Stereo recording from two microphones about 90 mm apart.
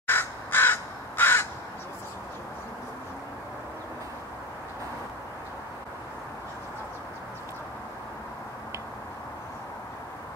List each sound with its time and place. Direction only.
0.0 s crow: 25° left (ahead or behind)